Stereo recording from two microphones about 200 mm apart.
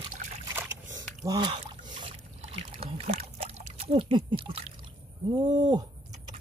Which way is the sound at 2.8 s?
30° right (ahead or behind).